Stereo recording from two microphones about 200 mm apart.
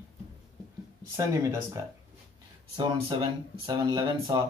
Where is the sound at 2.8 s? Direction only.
25° right (ahead or behind).